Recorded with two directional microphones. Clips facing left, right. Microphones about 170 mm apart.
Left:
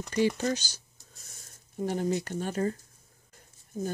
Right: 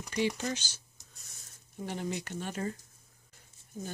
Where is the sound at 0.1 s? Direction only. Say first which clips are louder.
Left 5 dB; 40° left (ahead or behind).